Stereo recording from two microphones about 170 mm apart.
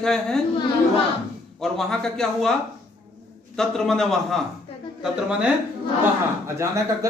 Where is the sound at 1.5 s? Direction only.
5° left (ahead or behind).